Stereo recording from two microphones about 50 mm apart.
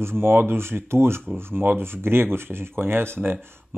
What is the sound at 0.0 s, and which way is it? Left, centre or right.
Speech, right.